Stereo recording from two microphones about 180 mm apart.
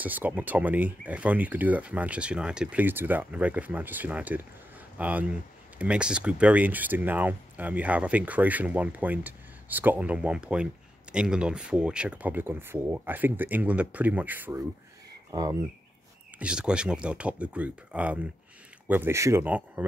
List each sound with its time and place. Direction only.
0.0 s speech: 10° right (ahead or behind)
16.3 s speech: 5° right (ahead or behind)